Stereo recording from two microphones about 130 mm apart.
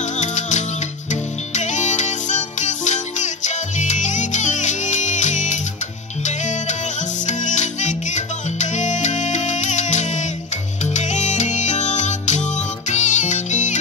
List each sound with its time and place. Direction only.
0.0 s music: 70° left (ahead or behind)